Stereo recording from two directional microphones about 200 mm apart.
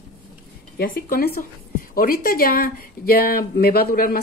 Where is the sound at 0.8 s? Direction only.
45° left (ahead or behind).